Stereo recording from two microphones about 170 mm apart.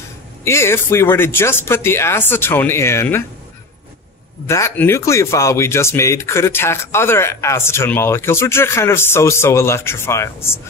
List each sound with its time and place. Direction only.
0.4 s speech: 15° left (ahead or behind)
4.5 s speech: 15° left (ahead or behind)